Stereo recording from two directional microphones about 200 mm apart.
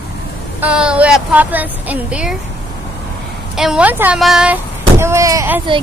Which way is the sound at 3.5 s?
5° right (ahead or behind).